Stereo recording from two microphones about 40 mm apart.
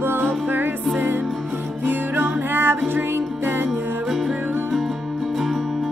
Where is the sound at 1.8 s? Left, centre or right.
Right.